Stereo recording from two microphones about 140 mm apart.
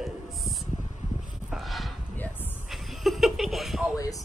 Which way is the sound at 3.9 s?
25° left (ahead or behind).